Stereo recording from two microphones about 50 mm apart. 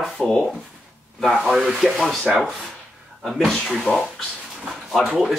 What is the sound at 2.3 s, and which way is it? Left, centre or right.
Speech, centre.